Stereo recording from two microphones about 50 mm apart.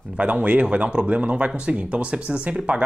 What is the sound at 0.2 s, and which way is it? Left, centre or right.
Speech, right.